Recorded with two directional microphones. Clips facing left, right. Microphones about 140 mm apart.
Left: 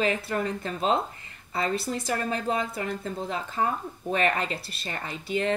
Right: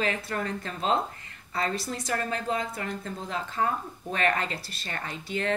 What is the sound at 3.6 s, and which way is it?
A woman's voice, 20° left (ahead or behind).